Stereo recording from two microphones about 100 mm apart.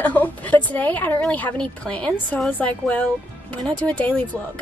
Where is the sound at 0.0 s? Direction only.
15° left (ahead or behind).